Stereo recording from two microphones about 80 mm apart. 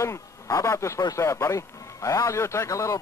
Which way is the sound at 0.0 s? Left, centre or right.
Left.